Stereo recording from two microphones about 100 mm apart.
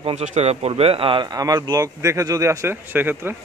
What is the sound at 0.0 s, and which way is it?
Speech, 90° right.